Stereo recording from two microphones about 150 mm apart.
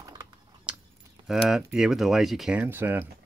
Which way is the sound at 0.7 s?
10° right (ahead or behind).